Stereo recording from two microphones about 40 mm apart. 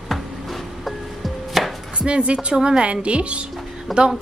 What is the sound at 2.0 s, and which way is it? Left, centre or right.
A woman's voice, right.